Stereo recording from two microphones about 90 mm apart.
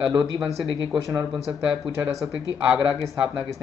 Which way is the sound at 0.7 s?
65° right (ahead or behind).